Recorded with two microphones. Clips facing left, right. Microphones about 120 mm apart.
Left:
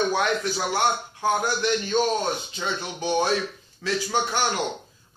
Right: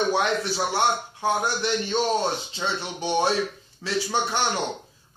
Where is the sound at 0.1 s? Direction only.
30° right (ahead or behind).